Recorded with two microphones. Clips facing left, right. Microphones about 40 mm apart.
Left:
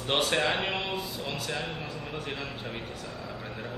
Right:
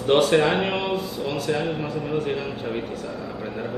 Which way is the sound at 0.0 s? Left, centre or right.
Centre.